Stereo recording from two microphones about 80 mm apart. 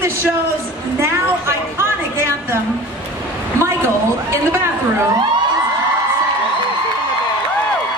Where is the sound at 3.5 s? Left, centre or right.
Right.